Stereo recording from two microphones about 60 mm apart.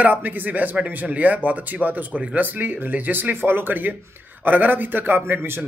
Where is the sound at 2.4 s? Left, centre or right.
Right.